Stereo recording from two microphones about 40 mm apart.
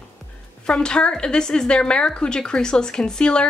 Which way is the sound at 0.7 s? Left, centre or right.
Left.